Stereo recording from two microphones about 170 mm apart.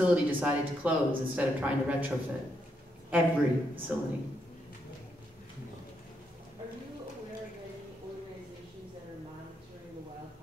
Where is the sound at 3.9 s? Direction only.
5° right (ahead or behind).